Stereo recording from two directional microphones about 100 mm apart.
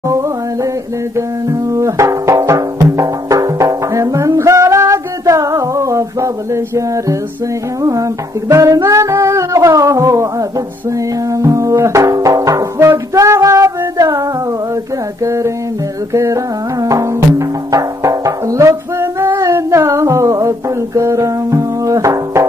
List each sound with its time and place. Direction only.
1.7 s music: 30° right (ahead or behind)
8.5 s music: 30° right (ahead or behind)
11.3 s music: 35° right (ahead or behind)
15.2 s music: 30° right (ahead or behind)